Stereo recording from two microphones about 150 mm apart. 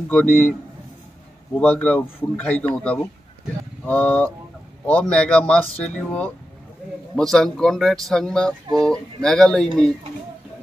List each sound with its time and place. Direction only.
0.1 s a man's voice: 5° left (ahead or behind)
1.6 s a man's voice: 10° left (ahead or behind)